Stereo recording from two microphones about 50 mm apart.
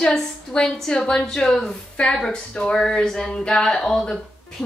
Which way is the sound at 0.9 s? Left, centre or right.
Centre.